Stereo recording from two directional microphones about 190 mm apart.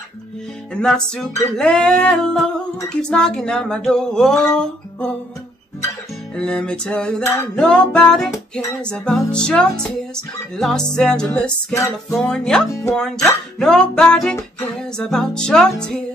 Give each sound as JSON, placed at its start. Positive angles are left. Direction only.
{"t": 0.7, "sound": "music", "side_deg": 5}
{"t": 6.3, "sound": "music", "side_deg": 5}
{"t": 11.7, "sound": "music", "side_deg": 15}
{"t": 12.2, "sound": "music", "side_deg": 5}